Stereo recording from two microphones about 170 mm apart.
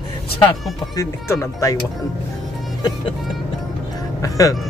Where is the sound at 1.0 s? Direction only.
20° left (ahead or behind).